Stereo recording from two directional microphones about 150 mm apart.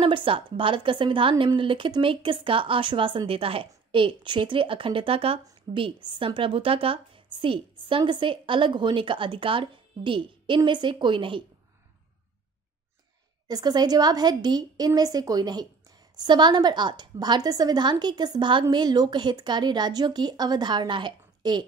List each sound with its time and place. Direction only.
0.0 s a woman's voice: 35° right (ahead or behind)
13.5 s a woman's voice: 25° right (ahead or behind)